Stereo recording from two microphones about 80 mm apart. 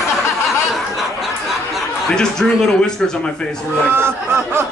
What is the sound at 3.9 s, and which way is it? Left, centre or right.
Speech, right.